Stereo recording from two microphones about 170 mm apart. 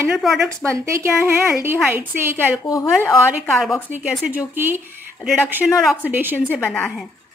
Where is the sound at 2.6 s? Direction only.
20° left (ahead or behind).